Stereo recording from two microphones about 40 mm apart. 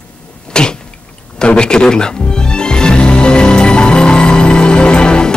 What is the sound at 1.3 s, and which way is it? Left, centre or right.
Music, left.